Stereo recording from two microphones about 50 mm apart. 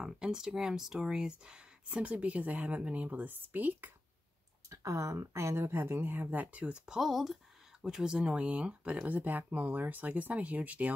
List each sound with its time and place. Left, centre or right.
0.0 s speech: centre; by 3.9 s right
4.6 s speech: right
5.7 s speech: right
7.0 s speech: centre
7.8 s speech: centre; by 11.0 s right